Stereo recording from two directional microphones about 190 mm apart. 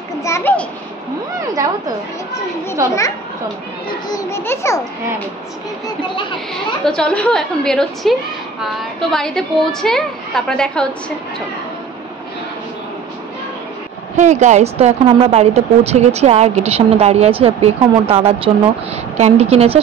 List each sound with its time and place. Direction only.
0.2 s a sound: 15° left (ahead or behind)
2.3 s a child's voice: 15° left (ahead or behind)
4.1 s a child's voice: 15° left (ahead or behind)
6.5 s a woman's voice: 5° left (ahead or behind)
14.1 s speech: 40° right (ahead or behind)